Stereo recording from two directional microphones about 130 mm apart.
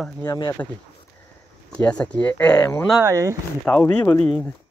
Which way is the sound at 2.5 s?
30° left (ahead or behind).